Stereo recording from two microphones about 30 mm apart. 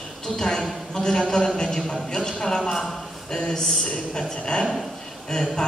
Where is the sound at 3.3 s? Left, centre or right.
Left.